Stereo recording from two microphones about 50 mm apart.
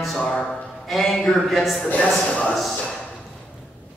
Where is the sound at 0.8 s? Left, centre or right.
Centre.